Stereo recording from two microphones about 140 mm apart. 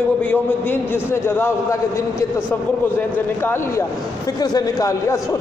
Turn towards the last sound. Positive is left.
turn(degrees=25)  # may be behind; listen again after turning